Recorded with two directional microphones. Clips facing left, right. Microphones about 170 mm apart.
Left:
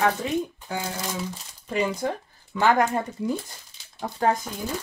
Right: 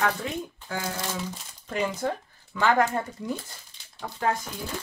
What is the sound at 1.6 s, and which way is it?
Speech, 10° left (ahead or behind).